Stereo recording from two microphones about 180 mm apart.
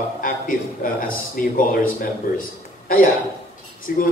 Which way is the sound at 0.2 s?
50° left (ahead or behind).